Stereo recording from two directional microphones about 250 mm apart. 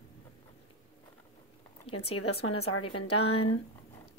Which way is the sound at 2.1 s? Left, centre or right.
Left.